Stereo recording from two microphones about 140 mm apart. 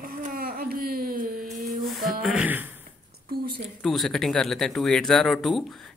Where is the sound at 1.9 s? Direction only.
Centre (ahead or behind).